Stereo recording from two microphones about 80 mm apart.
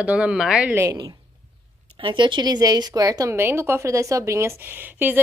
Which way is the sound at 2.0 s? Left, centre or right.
Right.